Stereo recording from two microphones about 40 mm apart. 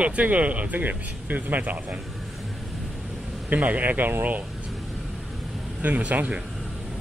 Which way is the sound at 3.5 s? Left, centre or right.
Right.